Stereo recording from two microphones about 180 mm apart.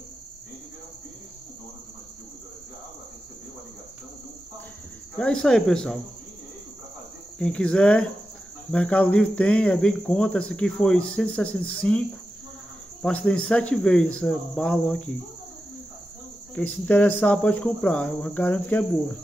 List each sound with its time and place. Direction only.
5.1 s speech: 5° left (ahead or behind)
7.3 s speech: 5° left (ahead or behind)
13.0 s speech: 5° left (ahead or behind)
16.5 s speech: 10° left (ahead or behind)